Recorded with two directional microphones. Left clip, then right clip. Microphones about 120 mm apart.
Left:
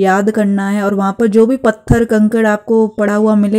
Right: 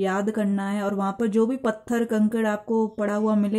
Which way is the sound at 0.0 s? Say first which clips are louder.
Left 13 dB; 35° left (ahead or behind).